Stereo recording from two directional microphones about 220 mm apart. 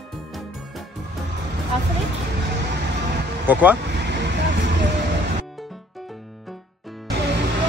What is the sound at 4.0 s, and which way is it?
Vehicle, 50° right (ahead or behind).